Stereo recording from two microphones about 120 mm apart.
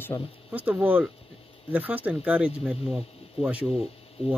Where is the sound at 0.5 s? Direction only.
15° right (ahead or behind).